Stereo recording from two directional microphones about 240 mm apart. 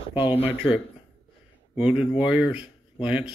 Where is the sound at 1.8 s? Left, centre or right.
Centre.